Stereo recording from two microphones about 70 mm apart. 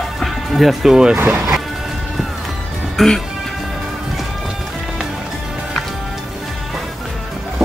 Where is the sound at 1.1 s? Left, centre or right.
Right.